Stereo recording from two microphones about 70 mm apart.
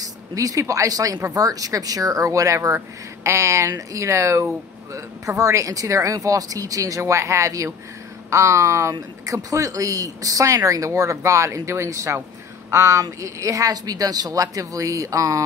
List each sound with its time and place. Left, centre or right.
0.0 s speech: right